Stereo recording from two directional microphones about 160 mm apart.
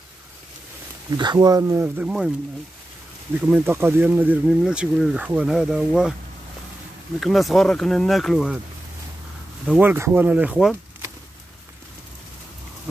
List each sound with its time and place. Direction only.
1.1 s speech: 25° right (ahead or behind); by 2.3 s 5° right (ahead or behind)
3.3 s speech: 10° right (ahead or behind)
7.2 s speech: centre (ahead or behind)
9.7 s speech: 10° right (ahead or behind)